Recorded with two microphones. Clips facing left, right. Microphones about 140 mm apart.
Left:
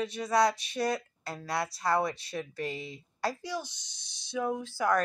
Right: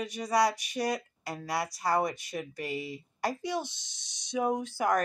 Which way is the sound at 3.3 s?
20° right (ahead or behind).